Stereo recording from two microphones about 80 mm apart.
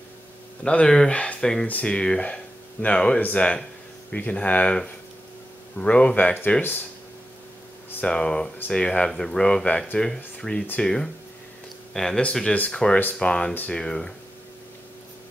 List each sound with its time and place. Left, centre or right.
0.7 s speech: centre
8.0 s speech: centre